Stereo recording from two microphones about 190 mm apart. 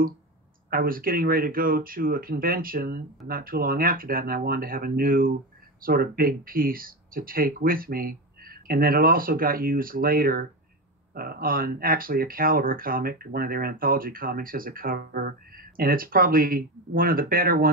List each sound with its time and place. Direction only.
0.7 s speech: 50° right (ahead or behind)